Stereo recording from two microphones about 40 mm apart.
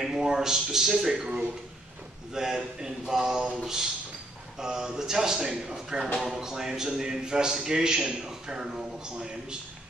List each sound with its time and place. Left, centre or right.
0.0 s a man's voice: centre